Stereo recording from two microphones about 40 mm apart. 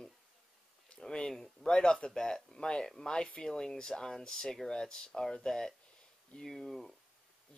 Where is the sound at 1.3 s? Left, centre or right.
Centre.